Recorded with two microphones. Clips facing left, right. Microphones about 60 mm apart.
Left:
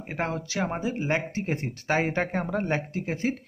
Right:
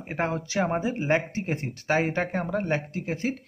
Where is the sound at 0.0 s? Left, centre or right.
Centre.